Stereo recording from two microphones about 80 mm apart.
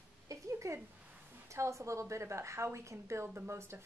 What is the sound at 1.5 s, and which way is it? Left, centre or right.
A woman's voice, right.